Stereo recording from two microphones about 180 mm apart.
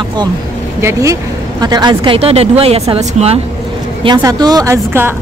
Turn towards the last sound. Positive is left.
turn(degrees=-15)  # may be behind; listen again after turning